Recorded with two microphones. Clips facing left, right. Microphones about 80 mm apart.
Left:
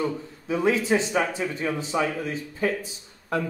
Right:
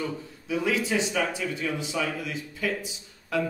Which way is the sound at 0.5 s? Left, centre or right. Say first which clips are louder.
Left 4 dB; left.